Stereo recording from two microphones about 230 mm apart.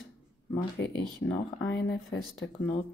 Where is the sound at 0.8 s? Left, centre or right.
Left.